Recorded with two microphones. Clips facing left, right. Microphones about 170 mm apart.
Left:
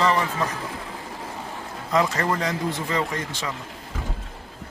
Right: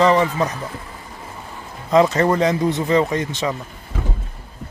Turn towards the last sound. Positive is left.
turn(degrees=-20)  # may be behind; listen again after turning